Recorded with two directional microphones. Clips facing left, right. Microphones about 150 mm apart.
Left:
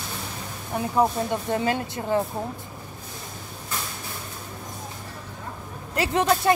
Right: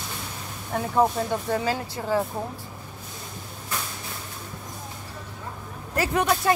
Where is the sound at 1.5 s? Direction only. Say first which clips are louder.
Left 1 dB; 20° left (ahead or behind).